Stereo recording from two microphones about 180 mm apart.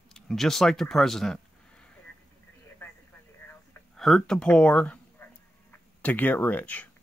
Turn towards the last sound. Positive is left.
turn(degrees=10)  # may be behind; listen again after turning